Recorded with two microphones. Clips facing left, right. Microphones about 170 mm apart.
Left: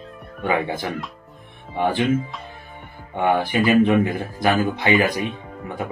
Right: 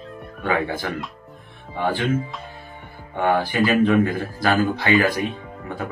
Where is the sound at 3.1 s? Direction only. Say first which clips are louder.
Even; 20° left (ahead or behind).